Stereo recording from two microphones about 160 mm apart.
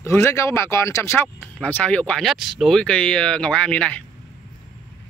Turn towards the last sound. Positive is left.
turn(degrees=5)  # may be behind; listen again after turning